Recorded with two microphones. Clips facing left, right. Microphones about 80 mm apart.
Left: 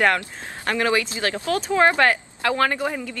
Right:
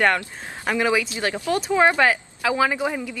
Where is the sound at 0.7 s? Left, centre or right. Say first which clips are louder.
Even; centre.